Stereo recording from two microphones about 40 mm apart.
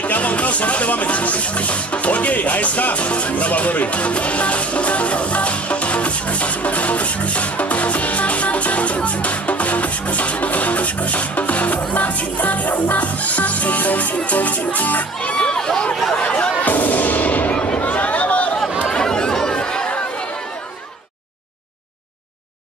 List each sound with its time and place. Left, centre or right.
0.0 s music: left
15.3 s a sound: centre
16.2 s chatter: left
16.6 s music: left
17.7 s chatter: left
18.9 s chatter: centre